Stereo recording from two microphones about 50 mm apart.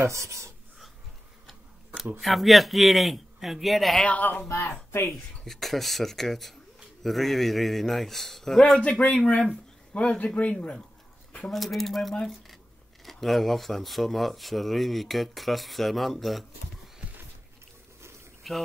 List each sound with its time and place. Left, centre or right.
0.0 s speech: right
2.1 s speech: centre
4.0 s speech: left
4.5 s speech: left
5.1 s speech: centre
9.1 s speech: left
11.5 s speech: centre
18.4 s speech: centre